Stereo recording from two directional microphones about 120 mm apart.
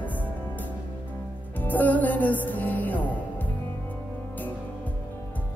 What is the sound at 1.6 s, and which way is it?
Music, 15° left (ahead or behind).